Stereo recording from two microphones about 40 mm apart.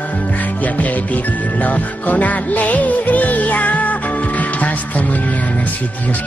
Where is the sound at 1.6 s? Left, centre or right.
Left.